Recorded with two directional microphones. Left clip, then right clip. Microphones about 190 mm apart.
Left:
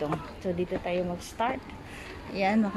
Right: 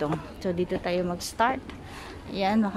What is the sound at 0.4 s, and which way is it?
A woman's voice, 25° right (ahead or behind).